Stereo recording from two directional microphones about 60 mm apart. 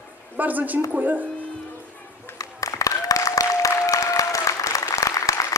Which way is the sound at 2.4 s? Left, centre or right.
Left.